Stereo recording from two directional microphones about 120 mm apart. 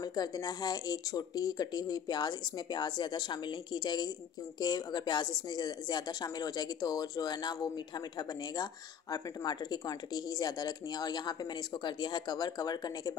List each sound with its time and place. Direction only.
0.0 s speech: 35° left (ahead or behind)